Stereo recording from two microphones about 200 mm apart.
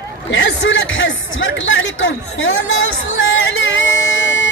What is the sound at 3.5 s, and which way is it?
Music, 65° left (ahead or behind).